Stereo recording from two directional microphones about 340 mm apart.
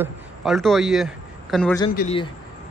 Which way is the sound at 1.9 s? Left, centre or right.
Centre.